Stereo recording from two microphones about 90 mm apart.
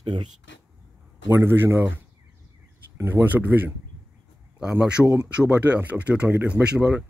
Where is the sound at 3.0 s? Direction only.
25° right (ahead or behind).